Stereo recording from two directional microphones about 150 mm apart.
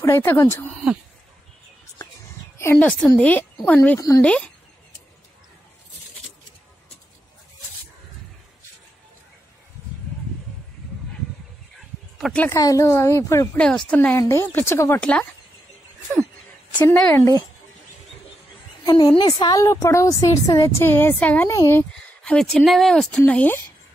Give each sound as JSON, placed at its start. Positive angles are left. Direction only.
{"t": 0.0, "sound": "a woman's voice", "side_deg": 20}
{"t": 2.5, "sound": "a sound", "side_deg": 20}
{"t": 3.2, "sound": "a woman's voice", "side_deg": 10}
{"t": 12.2, "sound": "speech", "side_deg": 5}
{"t": 12.4, "sound": "a woman's voice", "side_deg": 20}
{"t": 13.6, "sound": "a woman's voice", "side_deg": 5}
{"t": 16.7, "sound": "a woman's voice", "side_deg": 15}
{"t": 18.9, "sound": "a woman's voice", "side_deg": 25}
{"t": 22.2, "sound": "speech", "side_deg": 5}